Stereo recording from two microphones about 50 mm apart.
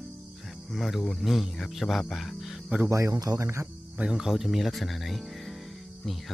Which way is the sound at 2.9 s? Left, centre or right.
Right.